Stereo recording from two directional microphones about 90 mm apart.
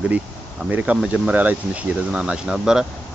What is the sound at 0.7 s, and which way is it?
Speech, 15° right (ahead or behind).